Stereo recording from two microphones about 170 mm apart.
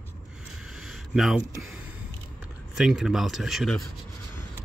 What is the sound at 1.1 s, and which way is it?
Speech, centre (ahead or behind).